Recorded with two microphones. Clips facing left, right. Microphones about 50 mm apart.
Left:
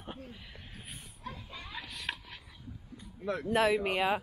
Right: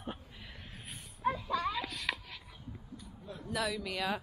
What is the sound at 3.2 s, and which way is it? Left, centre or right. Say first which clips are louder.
Speech: left 14 dB; left.